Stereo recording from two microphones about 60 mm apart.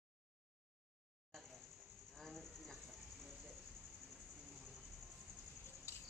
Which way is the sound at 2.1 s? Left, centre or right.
Centre.